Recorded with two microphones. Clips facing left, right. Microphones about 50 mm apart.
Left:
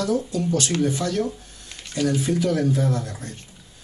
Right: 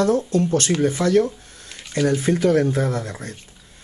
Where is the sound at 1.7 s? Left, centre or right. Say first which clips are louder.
Right 4 dB; centre.